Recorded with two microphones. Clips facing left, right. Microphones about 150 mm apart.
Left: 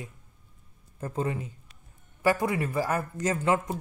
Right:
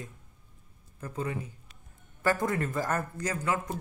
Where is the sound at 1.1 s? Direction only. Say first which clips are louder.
Left 4 dB; 25° left (ahead or behind).